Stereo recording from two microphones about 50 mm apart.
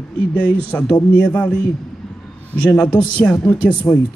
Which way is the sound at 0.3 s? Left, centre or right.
Left.